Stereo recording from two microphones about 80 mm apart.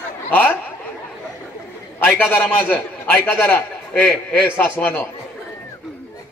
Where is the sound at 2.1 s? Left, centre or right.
Left.